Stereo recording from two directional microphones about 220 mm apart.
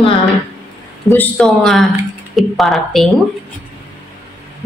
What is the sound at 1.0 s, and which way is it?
A woman's voice, 10° left (ahead or behind).